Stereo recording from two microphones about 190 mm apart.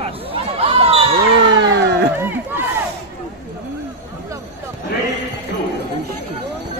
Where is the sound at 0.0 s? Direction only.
30° right (ahead or behind).